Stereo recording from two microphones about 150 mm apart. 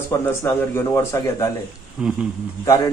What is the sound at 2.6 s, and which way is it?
Speech, 25° left (ahead or behind).